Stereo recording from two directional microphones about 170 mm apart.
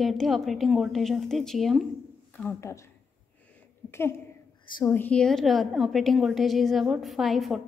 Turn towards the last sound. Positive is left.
turn(degrees=0)  # may be behind; listen again after turning